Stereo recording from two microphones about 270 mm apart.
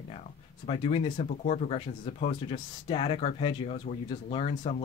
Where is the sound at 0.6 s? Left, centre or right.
Left.